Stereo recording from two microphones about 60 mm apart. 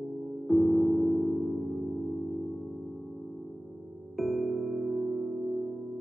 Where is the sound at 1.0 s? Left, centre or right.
Left.